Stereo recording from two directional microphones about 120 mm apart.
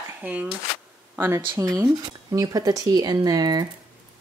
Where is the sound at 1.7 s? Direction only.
35° right (ahead or behind).